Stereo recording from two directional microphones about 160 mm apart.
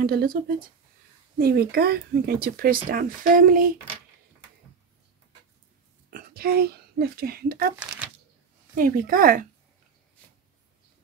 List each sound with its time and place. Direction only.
0.0 s speech: 70° right (ahead or behind)
6.0 s speech: 65° right (ahead or behind)
8.7 s speech: 65° right (ahead or behind)